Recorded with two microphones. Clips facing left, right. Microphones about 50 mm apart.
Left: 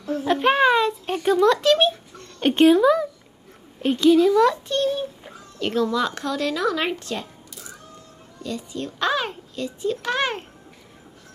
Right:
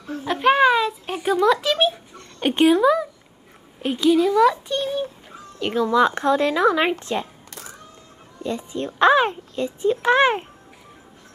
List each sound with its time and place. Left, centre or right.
0.0 s a sound: centre
2.4 s a child's voice: centre; by 7.2 s right
8.4 s a child's voice: right